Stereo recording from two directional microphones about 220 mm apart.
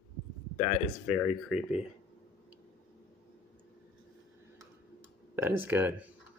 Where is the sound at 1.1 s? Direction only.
5° right (ahead or behind).